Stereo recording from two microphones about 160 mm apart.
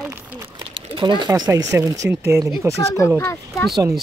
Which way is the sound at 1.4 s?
20° right (ahead or behind).